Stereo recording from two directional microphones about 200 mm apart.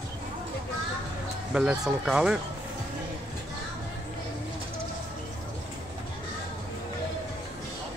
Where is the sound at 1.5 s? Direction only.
5° right (ahead or behind).